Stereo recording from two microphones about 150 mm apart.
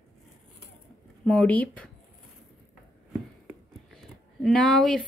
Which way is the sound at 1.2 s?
5° left (ahead or behind).